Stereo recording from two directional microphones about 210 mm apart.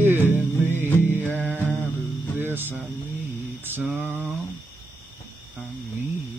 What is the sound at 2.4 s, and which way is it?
Music, 10° right (ahead or behind).